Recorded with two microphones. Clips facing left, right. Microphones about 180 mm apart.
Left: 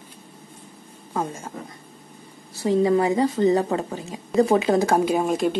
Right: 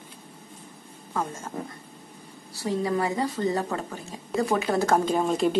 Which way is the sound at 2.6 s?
20° left (ahead or behind).